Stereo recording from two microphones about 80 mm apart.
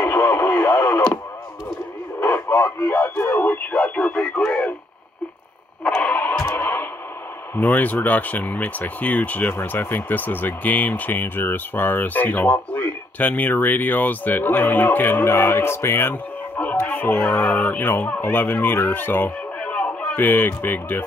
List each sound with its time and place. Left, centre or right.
0.0 s radio: centre
2.1 s radio: left
3.7 s radio: centre
5.9 s radio: centre
6.4 s music: left
7.5 s speech: left
19.6 s a sound: centre
20.2 s speech: left